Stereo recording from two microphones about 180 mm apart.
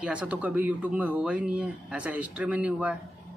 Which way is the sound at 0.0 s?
5° right (ahead or behind).